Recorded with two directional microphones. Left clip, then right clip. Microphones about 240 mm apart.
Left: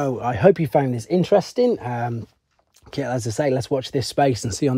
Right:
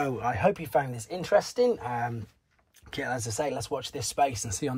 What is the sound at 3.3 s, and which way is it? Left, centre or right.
Speech, left.